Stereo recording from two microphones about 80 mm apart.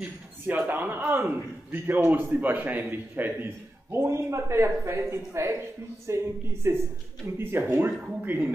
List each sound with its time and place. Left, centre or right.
0.7 s a man's voice: right